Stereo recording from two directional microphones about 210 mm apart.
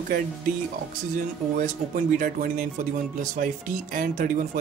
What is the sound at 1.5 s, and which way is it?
Speech, 40° right (ahead or behind).